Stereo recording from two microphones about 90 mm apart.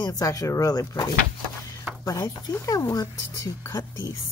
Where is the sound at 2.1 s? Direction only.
45° left (ahead or behind).